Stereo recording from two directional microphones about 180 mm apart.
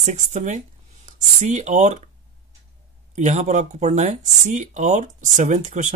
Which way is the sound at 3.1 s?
40° right (ahead or behind).